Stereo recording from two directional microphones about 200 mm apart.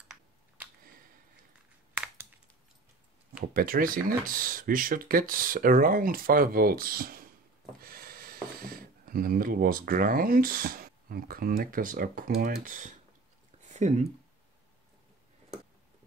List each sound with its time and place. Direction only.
3.3 s speech: 45° right (ahead or behind)